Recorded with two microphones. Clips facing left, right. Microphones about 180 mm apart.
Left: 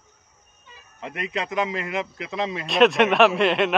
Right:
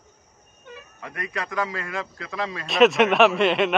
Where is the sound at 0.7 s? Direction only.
55° right (ahead or behind).